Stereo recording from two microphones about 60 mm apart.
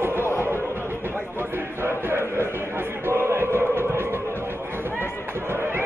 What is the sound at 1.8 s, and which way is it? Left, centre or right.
Chant, right.